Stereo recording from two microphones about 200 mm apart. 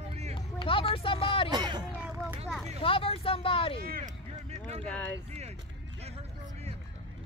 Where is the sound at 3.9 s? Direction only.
40° right (ahead or behind).